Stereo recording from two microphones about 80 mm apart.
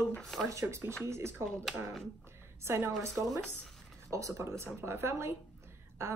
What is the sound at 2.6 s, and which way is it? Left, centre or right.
Speech, right.